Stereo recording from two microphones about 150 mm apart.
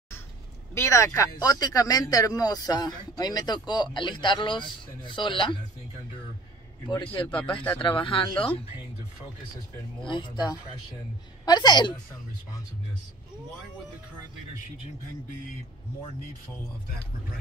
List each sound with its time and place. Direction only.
0.7 s speech: 20° left (ahead or behind)
7.4 s speech: 35° left (ahead or behind)
10.0 s speech: 30° left (ahead or behind)